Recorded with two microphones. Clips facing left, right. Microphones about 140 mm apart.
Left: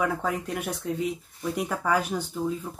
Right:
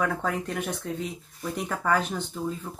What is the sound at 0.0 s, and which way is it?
Speech, 10° left (ahead or behind).